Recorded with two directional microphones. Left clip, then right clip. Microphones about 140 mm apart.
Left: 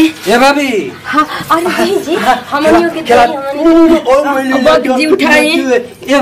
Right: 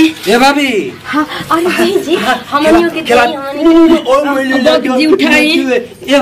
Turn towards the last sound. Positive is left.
turn(degrees=0)  # may be behind; listen again after turning